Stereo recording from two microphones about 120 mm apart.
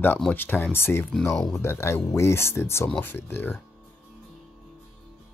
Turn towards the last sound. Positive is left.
turn(degrees=20)  # may be behind; listen again after turning